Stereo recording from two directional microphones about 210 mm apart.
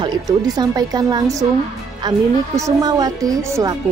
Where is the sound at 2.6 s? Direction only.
15° right (ahead or behind).